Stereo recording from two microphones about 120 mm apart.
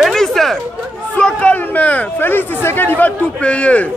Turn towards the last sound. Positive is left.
turn(degrees=10)  # may be behind; listen again after turning